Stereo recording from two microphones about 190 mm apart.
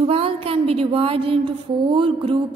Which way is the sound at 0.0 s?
30° right (ahead or behind).